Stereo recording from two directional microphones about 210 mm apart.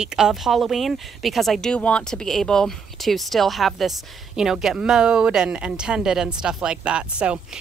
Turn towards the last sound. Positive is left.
turn(degrees=-5)  # may be behind; listen again after turning